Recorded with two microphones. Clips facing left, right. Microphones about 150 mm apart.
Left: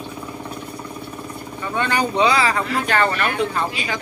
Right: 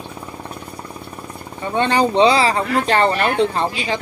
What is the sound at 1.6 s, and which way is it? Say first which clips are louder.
Speech: right 5 dB; 30° right (ahead or behind).